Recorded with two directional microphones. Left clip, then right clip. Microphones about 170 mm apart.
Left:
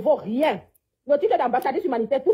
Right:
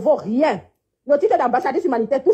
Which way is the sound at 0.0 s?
35° right (ahead or behind).